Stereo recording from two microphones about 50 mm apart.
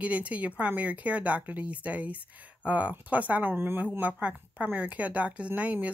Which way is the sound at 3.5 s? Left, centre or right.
Right.